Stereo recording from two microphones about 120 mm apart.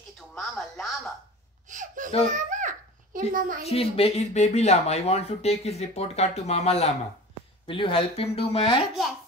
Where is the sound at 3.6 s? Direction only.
55° left (ahead or behind).